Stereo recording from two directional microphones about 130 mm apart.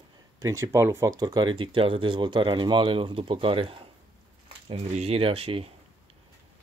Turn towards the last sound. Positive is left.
turn(degrees=-45)  # may be behind; listen again after turning